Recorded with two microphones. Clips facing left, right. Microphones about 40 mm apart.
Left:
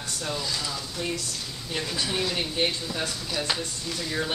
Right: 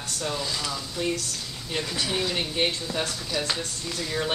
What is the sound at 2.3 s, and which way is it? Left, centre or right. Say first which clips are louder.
Speech: right 1 dB; centre.